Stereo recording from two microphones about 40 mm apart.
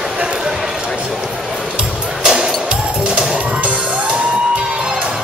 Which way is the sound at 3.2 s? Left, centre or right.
Right.